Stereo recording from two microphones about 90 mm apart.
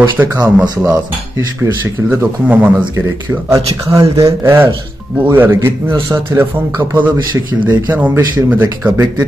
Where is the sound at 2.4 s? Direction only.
15° right (ahead or behind).